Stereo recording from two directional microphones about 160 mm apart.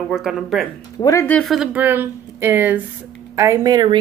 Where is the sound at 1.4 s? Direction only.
Centre (ahead or behind).